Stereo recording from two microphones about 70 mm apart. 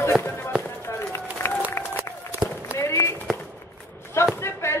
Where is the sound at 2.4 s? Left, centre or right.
Centre.